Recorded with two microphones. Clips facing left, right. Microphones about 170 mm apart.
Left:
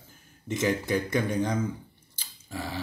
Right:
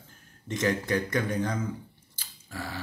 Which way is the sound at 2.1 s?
15° left (ahead or behind).